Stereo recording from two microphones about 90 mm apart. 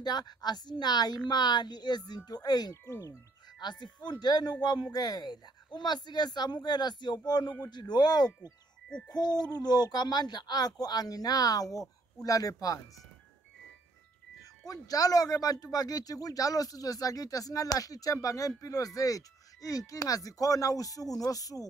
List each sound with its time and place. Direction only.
0.0 s a woman's voice: 50° left (ahead or behind)
3.5 s a woman's voice: 55° left (ahead or behind)
14.7 s a man's voice: 45° left (ahead or behind)